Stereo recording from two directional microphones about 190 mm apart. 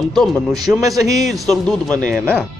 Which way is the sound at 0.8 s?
20° right (ahead or behind).